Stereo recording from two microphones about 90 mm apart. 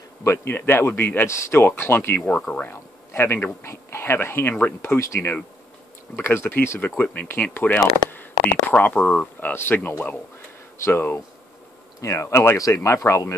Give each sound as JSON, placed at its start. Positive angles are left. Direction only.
{"t": 0.2, "sound": "speech", "side_deg": 25}
{"t": 2.3, "sound": "speech", "side_deg": 15}